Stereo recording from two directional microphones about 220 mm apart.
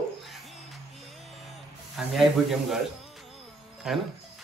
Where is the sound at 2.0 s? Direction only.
Centre (ahead or behind).